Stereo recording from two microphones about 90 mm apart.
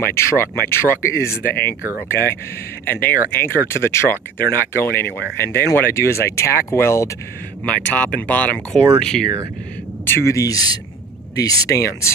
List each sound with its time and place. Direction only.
0.0 s speech: 30° left (ahead or behind)
1.8 s speech: 20° right (ahead or behind)
2.8 s speech: 25° left (ahead or behind)
7.6 s speech: 15° left (ahead or behind)
10.0 s speech: 30° left (ahead or behind)